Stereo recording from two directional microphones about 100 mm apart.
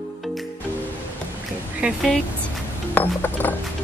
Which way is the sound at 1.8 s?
10° right (ahead or behind).